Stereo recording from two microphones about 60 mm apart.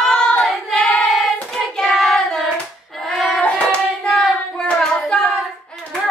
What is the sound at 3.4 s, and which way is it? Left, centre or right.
Hands, left.